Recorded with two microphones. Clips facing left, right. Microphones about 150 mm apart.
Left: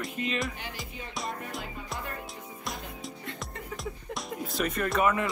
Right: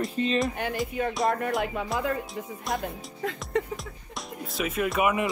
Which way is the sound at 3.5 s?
90° right.